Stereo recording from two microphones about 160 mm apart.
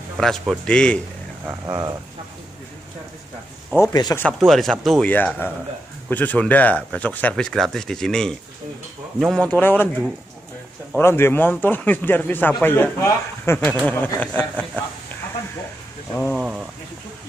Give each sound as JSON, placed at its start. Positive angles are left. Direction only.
{"t": 0.2, "sound": "a man's voice", "side_deg": 5}
{"t": 1.7, "sound": "speech", "side_deg": -25}
{"t": 3.7, "sound": "speech", "side_deg": 20}
{"t": 4.4, "sound": "a man's voice", "side_deg": 0}
{"t": 5.1, "sound": "speech", "side_deg": 10}
{"t": 11.0, "sound": "speech", "side_deg": 15}
{"t": 16.2, "sound": "a man's voice", "side_deg": 5}